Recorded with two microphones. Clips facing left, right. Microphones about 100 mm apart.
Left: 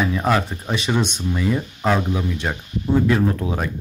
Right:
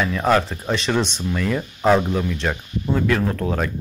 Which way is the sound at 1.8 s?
5° right (ahead or behind).